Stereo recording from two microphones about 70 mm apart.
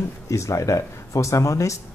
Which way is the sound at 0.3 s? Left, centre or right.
Left.